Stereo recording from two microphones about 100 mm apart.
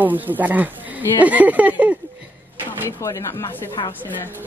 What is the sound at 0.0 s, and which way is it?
Speech, 20° right (ahead or behind).